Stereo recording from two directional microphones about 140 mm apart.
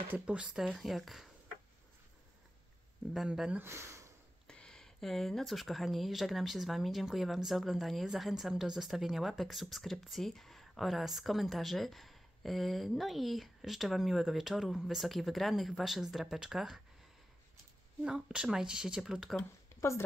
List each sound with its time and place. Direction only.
0.1 s speech: 10° right (ahead or behind)
3.1 s speech: 5° right (ahead or behind)
3.6 s speech: 20° right (ahead or behind)
4.5 s speech: 5° left (ahead or behind)
18.0 s speech: 5° right (ahead or behind)